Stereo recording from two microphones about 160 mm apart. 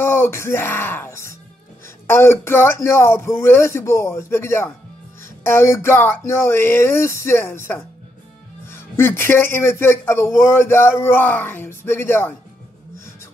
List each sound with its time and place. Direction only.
0.0 s speech: 15° left (ahead or behind)